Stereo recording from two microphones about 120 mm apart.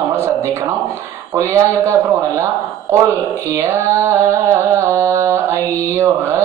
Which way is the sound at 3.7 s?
20° right (ahead or behind).